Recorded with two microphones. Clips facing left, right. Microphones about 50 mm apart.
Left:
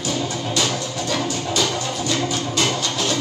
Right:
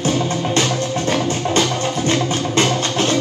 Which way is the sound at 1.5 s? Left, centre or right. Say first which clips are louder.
Right 4 dB; right.